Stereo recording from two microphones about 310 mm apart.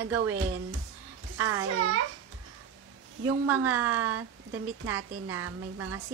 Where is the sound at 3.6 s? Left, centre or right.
Centre.